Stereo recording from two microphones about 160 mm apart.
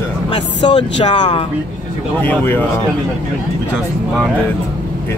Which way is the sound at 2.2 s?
10° left (ahead or behind).